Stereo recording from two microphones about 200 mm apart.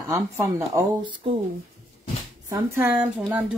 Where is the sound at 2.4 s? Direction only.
15° right (ahead or behind).